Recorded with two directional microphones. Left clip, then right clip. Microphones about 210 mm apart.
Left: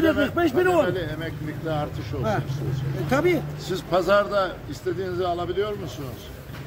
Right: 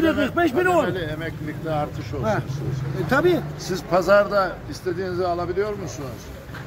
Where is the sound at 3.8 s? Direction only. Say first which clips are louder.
Right 3 dB; 10° right (ahead or behind).